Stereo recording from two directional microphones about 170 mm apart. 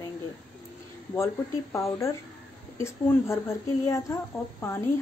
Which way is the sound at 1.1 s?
15° left (ahead or behind).